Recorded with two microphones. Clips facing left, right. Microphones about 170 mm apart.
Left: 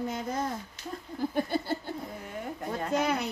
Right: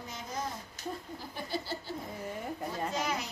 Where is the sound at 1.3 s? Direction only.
55° left (ahead or behind).